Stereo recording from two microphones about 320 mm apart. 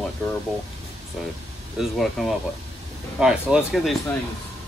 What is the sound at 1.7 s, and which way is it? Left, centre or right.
Speech, centre.